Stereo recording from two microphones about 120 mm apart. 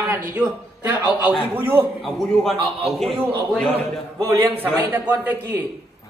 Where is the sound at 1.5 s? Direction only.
20° right (ahead or behind).